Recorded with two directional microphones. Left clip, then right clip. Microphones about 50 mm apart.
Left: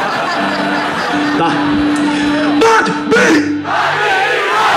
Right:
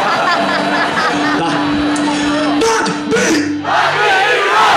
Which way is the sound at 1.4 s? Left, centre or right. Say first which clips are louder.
Left 2 dB; left.